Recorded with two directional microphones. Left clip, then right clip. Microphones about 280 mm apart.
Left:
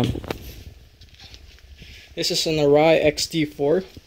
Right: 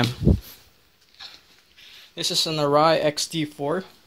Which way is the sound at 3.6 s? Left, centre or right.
Right.